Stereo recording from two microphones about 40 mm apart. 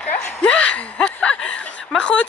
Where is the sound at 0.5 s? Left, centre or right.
Left.